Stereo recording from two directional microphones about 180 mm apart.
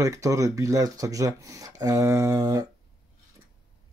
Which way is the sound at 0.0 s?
20° right (ahead or behind).